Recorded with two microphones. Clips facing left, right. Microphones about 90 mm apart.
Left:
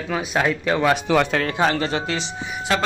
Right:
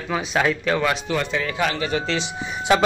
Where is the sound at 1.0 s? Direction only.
85° left.